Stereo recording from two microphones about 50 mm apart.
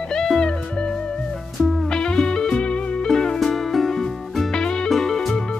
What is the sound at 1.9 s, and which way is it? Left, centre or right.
Music, centre.